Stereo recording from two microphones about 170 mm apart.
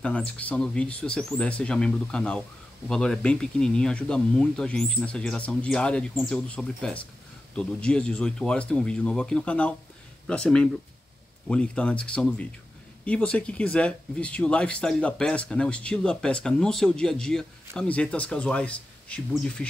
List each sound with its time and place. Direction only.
0.0 s speech: 5° left (ahead or behind)